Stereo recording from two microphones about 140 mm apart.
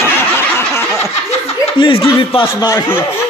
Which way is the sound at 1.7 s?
40° left (ahead or behind).